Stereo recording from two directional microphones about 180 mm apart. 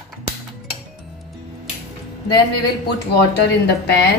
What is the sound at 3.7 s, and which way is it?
Speech, 65° left (ahead or behind).